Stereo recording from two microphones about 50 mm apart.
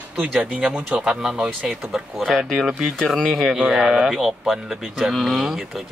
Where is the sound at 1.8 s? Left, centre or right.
Centre.